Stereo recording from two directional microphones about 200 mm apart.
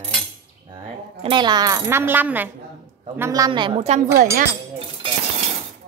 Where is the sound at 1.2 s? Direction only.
20° right (ahead or behind).